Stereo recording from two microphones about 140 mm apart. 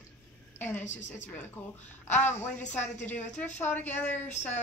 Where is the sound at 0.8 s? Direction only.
60° left (ahead or behind).